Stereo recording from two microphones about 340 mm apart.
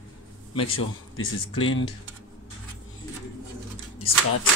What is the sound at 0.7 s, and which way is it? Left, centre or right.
Speech, left.